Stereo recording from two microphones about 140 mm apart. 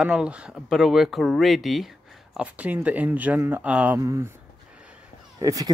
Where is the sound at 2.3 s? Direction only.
10° right (ahead or behind).